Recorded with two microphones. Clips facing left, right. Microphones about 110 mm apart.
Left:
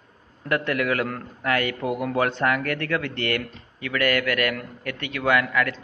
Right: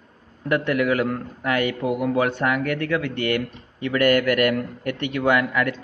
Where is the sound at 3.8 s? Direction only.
25° right (ahead or behind).